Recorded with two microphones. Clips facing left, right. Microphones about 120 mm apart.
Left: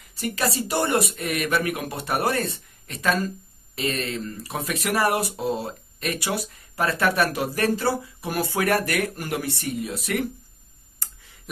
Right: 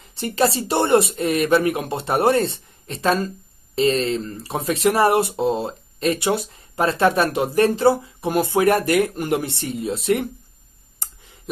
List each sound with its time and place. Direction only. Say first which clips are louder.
0.1 s speech: right 6 dB; 25° right (ahead or behind)